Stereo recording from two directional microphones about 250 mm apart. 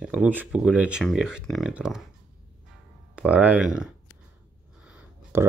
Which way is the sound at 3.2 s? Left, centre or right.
Centre.